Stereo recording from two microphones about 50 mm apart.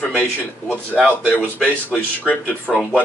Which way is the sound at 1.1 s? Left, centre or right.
Left.